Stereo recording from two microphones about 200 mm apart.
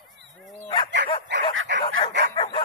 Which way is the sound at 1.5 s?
90° right.